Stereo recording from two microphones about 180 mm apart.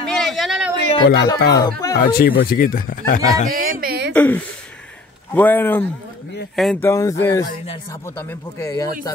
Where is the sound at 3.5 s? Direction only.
55° right (ahead or behind).